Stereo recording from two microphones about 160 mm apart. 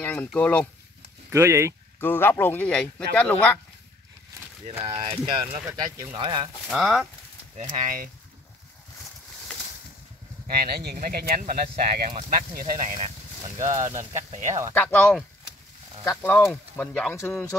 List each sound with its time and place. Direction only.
0.0 s speech: 10° left (ahead or behind)
1.3 s speech: 15° right (ahead or behind)
2.0 s speech: 15° left (ahead or behind)
4.6 s speech: 40° right (ahead or behind)
6.7 s speech: centre (ahead or behind)
7.7 s speech: 55° right (ahead or behind)
10.4 s speech: 70° right (ahead or behind)
12.5 s speech: 55° right (ahead or behind)
13.6 s speech: 20° right (ahead or behind)
14.7 s speech: 10° left (ahead or behind)